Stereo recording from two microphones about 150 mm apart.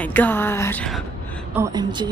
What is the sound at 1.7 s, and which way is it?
Speech, 30° right (ahead or behind).